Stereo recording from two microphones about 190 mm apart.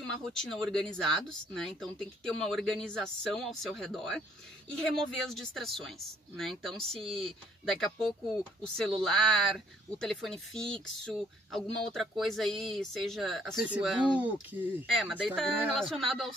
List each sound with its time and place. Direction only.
0.1 s speech: centre (ahead or behind)